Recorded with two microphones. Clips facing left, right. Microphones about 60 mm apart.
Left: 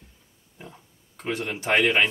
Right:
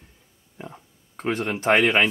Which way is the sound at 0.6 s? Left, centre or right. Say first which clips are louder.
Right 5 dB; right.